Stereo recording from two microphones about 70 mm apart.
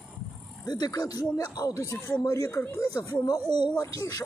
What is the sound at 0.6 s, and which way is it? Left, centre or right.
Speech, left.